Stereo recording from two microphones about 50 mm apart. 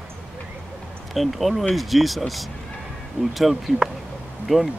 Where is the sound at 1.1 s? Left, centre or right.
Centre.